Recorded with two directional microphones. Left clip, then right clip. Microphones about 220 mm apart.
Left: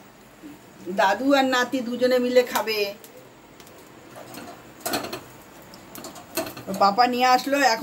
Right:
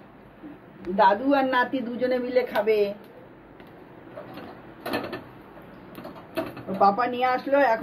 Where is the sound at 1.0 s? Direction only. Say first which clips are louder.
Even; 30° left (ahead or behind).